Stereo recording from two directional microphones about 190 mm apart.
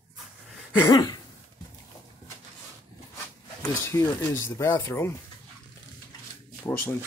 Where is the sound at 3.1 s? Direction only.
15° left (ahead or behind).